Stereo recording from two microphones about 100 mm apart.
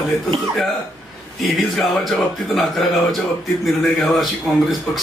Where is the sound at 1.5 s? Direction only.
Centre (ahead or behind).